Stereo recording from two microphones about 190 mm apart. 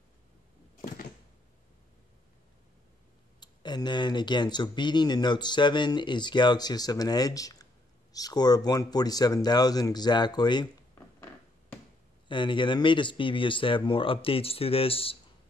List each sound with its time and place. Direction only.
0.7 s a sound: 50° left (ahead or behind)
3.3 s speech: 25° left (ahead or behind)
12.3 s speech: 25° left (ahead or behind)